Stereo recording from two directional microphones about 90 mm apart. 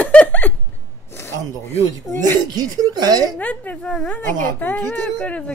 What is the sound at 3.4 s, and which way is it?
A woman's voice, 15° left (ahead or behind).